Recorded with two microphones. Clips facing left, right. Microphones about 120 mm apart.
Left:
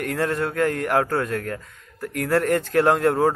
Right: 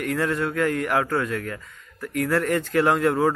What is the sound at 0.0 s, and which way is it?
Speech, 45° left (ahead or behind).